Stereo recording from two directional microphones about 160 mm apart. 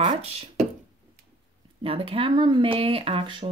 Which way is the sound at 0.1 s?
35° right (ahead or behind).